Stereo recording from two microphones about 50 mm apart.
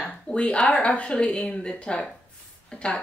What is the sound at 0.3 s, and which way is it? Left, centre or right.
Speech, left.